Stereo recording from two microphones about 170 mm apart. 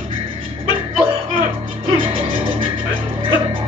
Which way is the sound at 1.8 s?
30° right (ahead or behind).